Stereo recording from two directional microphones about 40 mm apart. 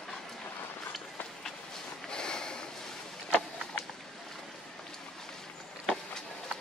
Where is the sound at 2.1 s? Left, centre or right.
Centre.